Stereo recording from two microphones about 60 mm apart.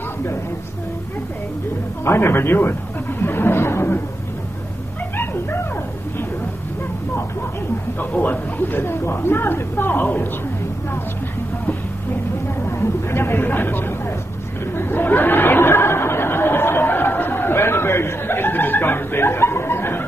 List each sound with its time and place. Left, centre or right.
2.0 s speech: left
3.2 s a sound: left
5.1 s dog: left
8.0 s speech: left
12.6 s a sound: left
14.8 s chatter: left